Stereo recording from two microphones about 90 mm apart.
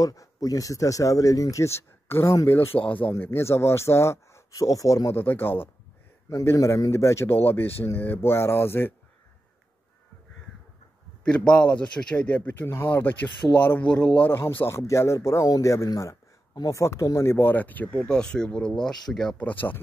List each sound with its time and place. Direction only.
0.0 s speech: 40° left (ahead or behind)
2.7 s speech: 75° left (ahead or behind)
3.1 s speech: 30° left (ahead or behind)
5.2 s speech: 25° left (ahead or behind)
6.3 s speech: 35° left (ahead or behind)
11.2 s a man's voice: 10° left (ahead or behind)
14.3 s speech: 25° left (ahead or behind); by 16.8 s 45° left (ahead or behind)
17.0 s a man's voice: 35° left (ahead or behind); by 19.3 s 5° left (ahead or behind)
19.3 s speech: 20° left (ahead or behind)